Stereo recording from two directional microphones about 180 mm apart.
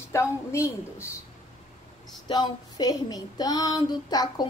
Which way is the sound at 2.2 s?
25° left (ahead or behind).